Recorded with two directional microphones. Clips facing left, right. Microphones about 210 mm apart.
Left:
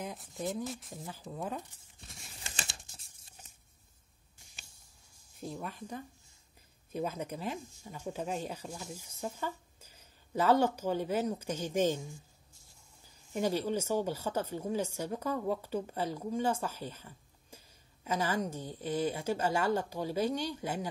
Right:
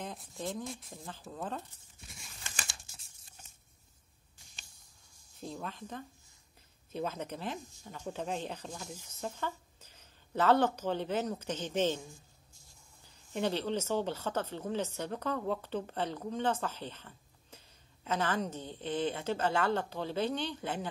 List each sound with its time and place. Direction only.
0.0 s speech: centre (ahead or behind)
1.1 s a woman's voice: 10° left (ahead or behind)
2.4 s a sound: 30° left (ahead or behind)
5.4 s a woman's voice: 10° left (ahead or behind)
13.3 s a woman's voice: 10° left (ahead or behind)